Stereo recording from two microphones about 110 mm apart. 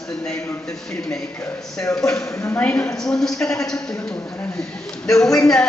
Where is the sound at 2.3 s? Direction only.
25° left (ahead or behind).